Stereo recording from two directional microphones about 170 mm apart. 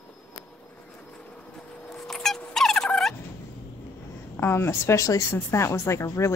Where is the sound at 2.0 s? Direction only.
Centre (ahead or behind).